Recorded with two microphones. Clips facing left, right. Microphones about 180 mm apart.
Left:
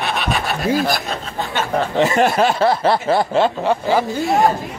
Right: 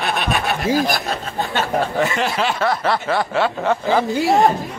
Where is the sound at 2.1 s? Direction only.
45° left (ahead or behind).